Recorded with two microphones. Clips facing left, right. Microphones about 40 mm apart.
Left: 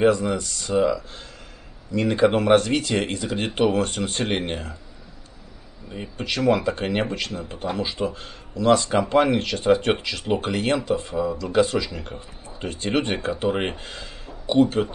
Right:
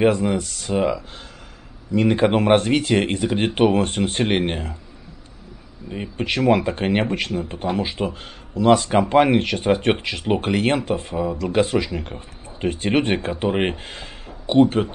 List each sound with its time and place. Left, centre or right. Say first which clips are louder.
0.0 s speech: right 1 dB; right
5.9 s speech: right 4 dB; right